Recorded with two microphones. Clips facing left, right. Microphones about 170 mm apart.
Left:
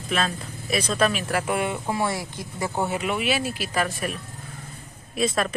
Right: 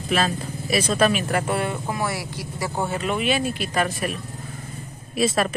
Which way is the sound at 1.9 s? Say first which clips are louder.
Left 1 dB; 25° left (ahead or behind).